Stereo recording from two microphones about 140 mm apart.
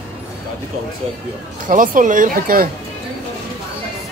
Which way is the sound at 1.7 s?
70° right (ahead or behind).